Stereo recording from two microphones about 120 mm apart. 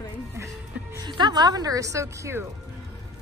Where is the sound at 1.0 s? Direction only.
35° right (ahead or behind).